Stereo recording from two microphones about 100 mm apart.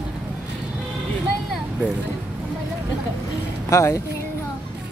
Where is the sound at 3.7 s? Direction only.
30° left (ahead or behind).